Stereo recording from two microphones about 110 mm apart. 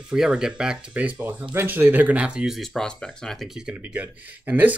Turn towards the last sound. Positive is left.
turn(degrees=-15)  # may be behind; listen again after turning